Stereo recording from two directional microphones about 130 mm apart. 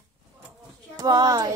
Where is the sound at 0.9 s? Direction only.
30° right (ahead or behind).